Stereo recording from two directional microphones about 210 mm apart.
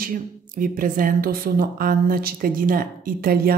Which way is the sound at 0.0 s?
40° right (ahead or behind).